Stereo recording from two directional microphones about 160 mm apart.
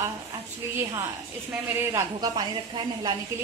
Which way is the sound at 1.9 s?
25° right (ahead or behind).